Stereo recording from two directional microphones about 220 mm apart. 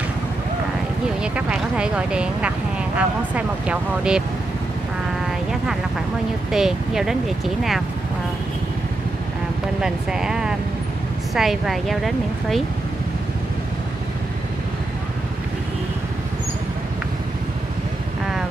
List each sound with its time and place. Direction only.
1.2 s speech: 5° right (ahead or behind)
6.5 s speech: centre (ahead or behind)
9.8 s speech: 5° right (ahead or behind)